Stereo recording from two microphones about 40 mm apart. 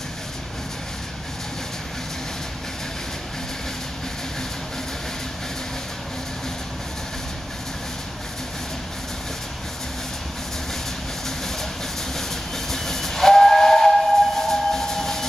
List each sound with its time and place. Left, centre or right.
12.2 s train: centre